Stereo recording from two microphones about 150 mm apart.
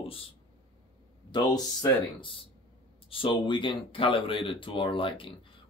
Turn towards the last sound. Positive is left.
turn(degrees=35)  # may be behind; listen again after turning